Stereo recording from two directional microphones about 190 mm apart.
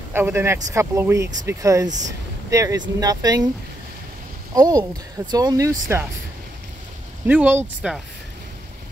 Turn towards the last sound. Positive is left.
turn(degrees=-5)  # may be behind; listen again after turning